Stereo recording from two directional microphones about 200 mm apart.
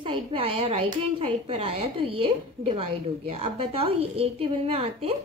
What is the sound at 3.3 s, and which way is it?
A woman's voice, 30° right (ahead or behind).